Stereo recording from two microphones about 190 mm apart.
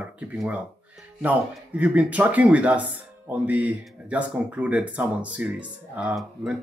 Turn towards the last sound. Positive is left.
turn(degrees=-5)  # may be behind; listen again after turning